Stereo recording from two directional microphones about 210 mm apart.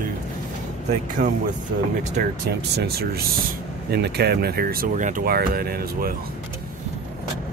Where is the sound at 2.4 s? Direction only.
50° right (ahead or behind).